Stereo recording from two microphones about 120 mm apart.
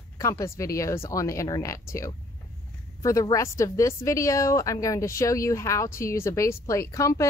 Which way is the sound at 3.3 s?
25° left (ahead or behind).